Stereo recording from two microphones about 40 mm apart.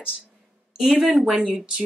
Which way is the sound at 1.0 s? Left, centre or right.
Centre.